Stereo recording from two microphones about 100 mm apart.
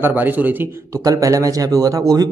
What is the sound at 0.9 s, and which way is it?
Speech, 35° right (ahead or behind).